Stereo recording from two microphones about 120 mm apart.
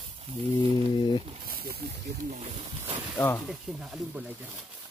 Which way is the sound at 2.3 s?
60° right (ahead or behind).